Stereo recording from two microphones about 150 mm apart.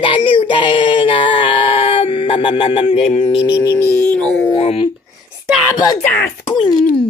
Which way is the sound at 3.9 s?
10° left (ahead or behind).